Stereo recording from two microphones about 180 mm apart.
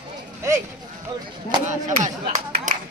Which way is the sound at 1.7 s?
45° right (ahead or behind).